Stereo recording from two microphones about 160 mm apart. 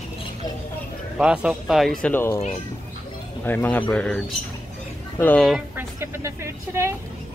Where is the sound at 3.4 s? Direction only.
10° left (ahead or behind).